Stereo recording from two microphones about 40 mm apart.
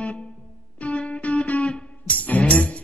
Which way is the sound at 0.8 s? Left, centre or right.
Left.